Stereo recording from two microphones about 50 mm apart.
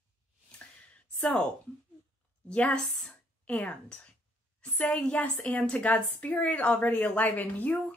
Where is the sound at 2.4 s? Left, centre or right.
Left.